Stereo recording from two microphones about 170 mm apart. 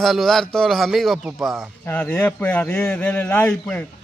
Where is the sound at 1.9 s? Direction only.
10° left (ahead or behind).